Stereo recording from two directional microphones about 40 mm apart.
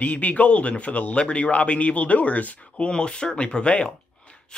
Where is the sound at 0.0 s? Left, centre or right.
Left.